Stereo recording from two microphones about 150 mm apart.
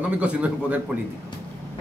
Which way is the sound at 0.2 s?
10° right (ahead or behind).